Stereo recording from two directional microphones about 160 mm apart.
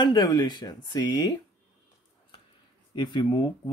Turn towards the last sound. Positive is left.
turn(degrees=25)  # may be behind; listen again after turning